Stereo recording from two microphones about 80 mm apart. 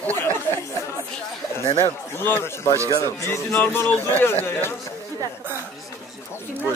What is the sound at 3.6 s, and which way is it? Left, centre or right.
Speech, left.